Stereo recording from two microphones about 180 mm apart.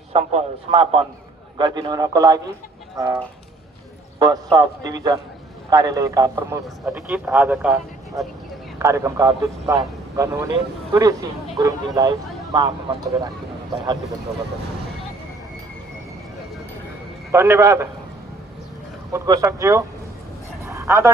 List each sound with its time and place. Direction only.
0.1 s a man's voice: 35° right (ahead or behind); by 2.4 s 20° right (ahead or behind)
4.2 s a man's voice: 25° right (ahead or behind)
17.3 s a man's voice: 15° right (ahead or behind)
19.1 s speech: 20° right (ahead or behind)
20.6 s a sound: 15° right (ahead or behind)